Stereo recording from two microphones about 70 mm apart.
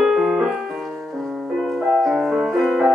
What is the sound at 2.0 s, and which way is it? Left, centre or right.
Music, centre.